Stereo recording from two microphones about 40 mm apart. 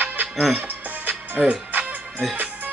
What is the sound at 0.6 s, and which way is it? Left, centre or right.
Music, right.